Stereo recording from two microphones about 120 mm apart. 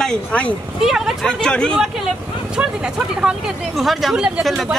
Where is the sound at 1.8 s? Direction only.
5° right (ahead or behind).